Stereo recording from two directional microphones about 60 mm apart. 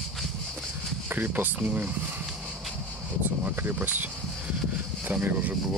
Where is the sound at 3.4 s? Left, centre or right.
Right.